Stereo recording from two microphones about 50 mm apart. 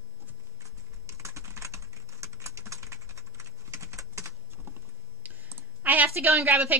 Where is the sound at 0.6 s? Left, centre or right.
Right.